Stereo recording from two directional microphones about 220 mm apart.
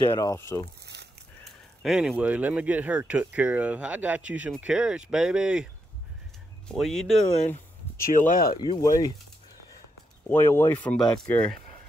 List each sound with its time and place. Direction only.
0.0 s speech: 20° left (ahead or behind)
0.9 s a sound: 50° right (ahead or behind)
1.4 s speech: centre (ahead or behind)
6.7 s speech: centre (ahead or behind)
8.5 s speech: 20° left (ahead or behind)
10.3 s speech: 10° left (ahead or behind)